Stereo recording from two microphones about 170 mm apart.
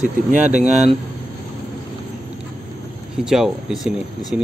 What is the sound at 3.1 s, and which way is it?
Speech, 5° right (ahead or behind).